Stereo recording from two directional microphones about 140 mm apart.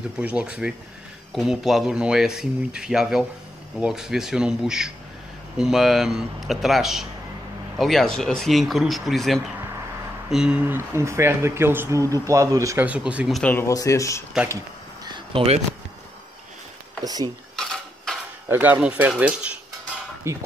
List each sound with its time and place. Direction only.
0.2 s speech: 10° right (ahead or behind)
12.8 s speech: 10° right (ahead or behind)
13.4 s speech: 10° left (ahead or behind)
13.7 s speech: 25° left (ahead or behind)
15.0 s a sound: 35° right (ahead or behind)
17.0 s speech: 25° right (ahead or behind)
17.6 s cutlery: centre (ahead or behind)
18.5 s speech: 15° right (ahead or behind)
20.2 s speech: 20° right (ahead or behind)